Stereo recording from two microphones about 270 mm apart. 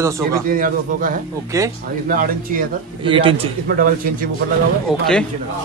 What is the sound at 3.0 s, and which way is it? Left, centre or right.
Speech, centre.